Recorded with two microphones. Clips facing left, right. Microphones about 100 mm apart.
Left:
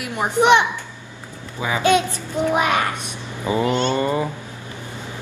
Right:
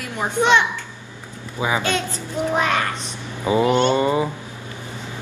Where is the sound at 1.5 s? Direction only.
20° right (ahead or behind).